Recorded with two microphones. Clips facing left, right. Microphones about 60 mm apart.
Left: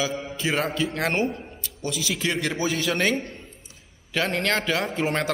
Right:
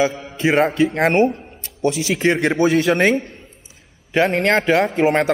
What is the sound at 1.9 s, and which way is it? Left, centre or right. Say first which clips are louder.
Speech: right 9 dB; right.